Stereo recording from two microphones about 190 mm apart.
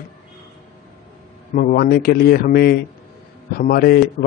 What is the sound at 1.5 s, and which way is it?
A man's voice, 45° left (ahead or behind).